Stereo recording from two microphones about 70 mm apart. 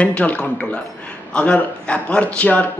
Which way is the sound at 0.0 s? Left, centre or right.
Centre.